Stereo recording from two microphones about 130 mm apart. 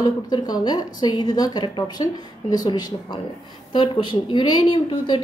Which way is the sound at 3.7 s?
40° left (ahead or behind).